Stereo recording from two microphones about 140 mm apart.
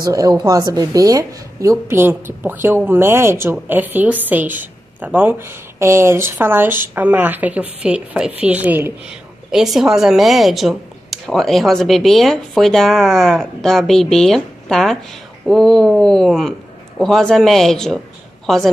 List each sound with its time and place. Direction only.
0.0 s a woman's voice: 25° right (ahead or behind); by 18.6 s centre (ahead or behind)